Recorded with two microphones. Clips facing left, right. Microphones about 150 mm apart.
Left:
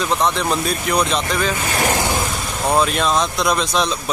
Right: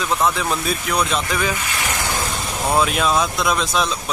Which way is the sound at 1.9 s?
20° left (ahead or behind).